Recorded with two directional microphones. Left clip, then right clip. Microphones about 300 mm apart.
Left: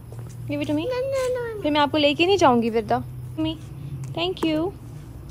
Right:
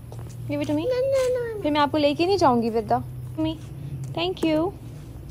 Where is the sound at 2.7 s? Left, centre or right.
Left.